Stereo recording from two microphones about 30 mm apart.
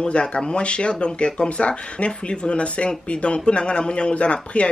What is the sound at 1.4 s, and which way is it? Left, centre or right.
Speech, left.